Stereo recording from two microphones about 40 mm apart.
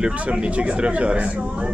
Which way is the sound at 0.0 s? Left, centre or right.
Right.